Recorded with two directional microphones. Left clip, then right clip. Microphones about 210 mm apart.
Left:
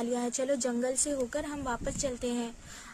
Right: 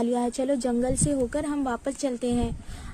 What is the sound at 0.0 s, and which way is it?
A woman's voice, 20° right (ahead or behind).